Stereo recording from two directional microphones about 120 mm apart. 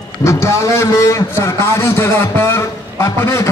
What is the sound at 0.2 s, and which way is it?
A man's voice, 25° left (ahead or behind).